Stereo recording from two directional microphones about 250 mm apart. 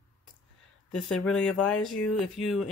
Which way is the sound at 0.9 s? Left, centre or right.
Centre.